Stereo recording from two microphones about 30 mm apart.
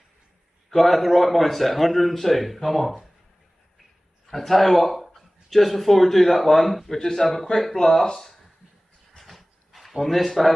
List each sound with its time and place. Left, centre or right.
0.7 s a man's voice: centre
4.3 s speech: centre
6.9 s speech: centre
9.2 s a sound: centre